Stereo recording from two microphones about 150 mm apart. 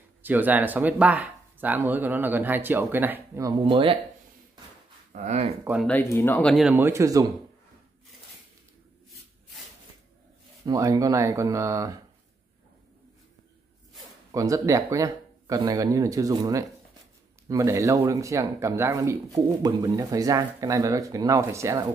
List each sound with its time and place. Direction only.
0.2 s speech: 10° right (ahead or behind)
3.6 s speech: 35° right (ahead or behind)
5.1 s speech: 50° right (ahead or behind)
5.9 s speech: 15° left (ahead or behind)
6.7 s speech: 15° right (ahead or behind)
10.6 s speech: 20° right (ahead or behind)
14.3 s speech: 20° right (ahead or behind)